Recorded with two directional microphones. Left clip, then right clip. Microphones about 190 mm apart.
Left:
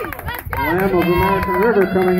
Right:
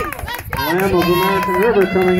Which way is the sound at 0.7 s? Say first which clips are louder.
Right 1 dB; 10° right (ahead or behind).